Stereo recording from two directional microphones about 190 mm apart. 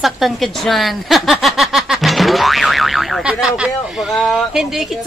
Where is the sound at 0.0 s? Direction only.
Centre (ahead or behind).